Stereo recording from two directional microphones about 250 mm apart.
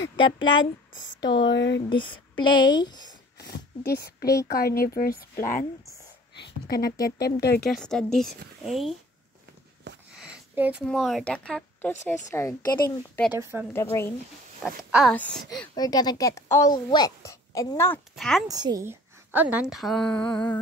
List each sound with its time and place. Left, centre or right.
0.9 s speech: left
1.9 s a woman's voice: centre
3.3 s speech: left
7.6 s a woman's voice: centre
10.1 s a woman's voice: centre
13.4 s speech: centre
13.7 s a woman's voice: centre
14.9 s a woman's voice: centre
15.7 s a woman's voice: centre
18.5 s a woman's voice: centre